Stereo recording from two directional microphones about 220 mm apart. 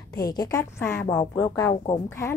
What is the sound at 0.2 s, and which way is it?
Speech, 15° left (ahead or behind).